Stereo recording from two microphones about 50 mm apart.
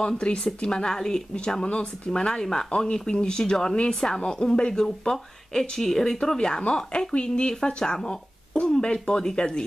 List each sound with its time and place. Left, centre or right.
0.0 s speech: centre